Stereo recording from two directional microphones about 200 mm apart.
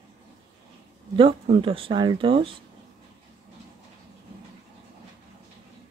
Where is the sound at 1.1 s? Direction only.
25° right (ahead or behind).